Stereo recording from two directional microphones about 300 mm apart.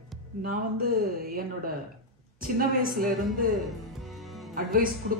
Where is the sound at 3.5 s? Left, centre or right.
Centre.